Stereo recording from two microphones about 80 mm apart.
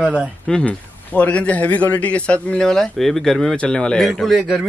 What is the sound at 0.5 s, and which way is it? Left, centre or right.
A man's voice, centre.